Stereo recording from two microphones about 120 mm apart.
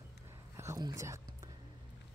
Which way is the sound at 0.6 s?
25° right (ahead or behind).